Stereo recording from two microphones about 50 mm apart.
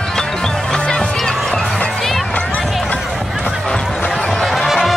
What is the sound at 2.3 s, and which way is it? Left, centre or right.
Run, left.